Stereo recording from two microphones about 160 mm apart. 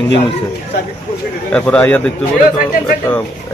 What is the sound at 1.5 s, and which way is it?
A man's voice, 10° left (ahead or behind).